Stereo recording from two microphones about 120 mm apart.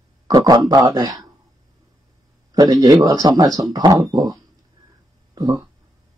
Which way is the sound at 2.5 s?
35° right (ahead or behind).